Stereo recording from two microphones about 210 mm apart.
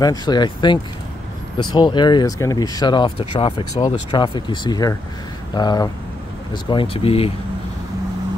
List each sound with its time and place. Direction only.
0.0 s speech: 20° left (ahead or behind)